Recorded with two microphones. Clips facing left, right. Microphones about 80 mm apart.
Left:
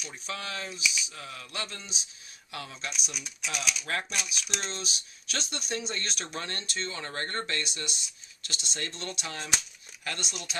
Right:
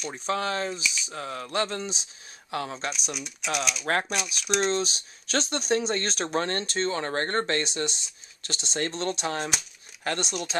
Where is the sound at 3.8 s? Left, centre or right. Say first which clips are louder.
Right 10 dB; right.